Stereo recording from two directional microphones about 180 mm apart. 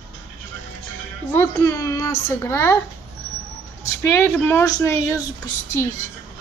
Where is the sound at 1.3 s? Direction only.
15° left (ahead or behind).